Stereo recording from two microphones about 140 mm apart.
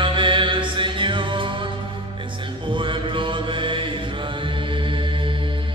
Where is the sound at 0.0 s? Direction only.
35° right (ahead or behind).